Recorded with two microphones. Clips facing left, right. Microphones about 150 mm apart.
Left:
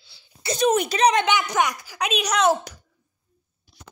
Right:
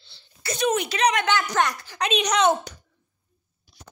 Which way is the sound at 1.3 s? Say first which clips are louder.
Left 1 dB; 15° left (ahead or behind).